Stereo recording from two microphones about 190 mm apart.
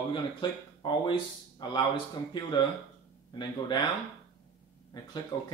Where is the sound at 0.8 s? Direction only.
25° left (ahead or behind).